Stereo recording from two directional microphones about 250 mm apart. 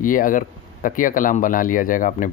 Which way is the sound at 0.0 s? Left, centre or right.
Left.